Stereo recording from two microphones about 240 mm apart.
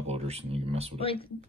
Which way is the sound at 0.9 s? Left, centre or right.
Left.